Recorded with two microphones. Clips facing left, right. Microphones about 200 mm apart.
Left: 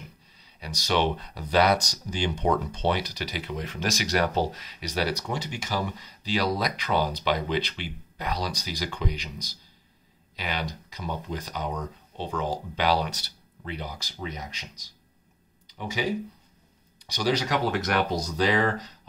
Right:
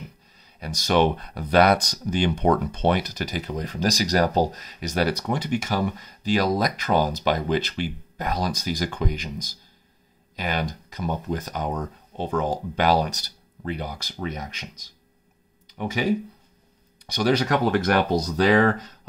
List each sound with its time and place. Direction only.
0.6 s speech: 50° right (ahead or behind)